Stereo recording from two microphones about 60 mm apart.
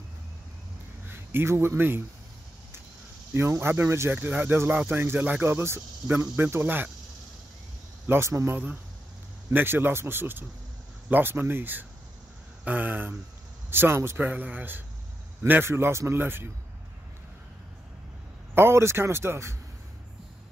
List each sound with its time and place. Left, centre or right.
1.0 s a man's voice: right
3.3 s speech: right
4.1 s speech: right
8.1 s speech: right
8.5 s speech: right
14.2 s speech: right
15.6 s speech: right
18.5 s speech: right